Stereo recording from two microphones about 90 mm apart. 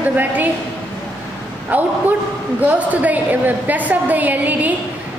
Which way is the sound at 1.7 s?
20° right (ahead or behind).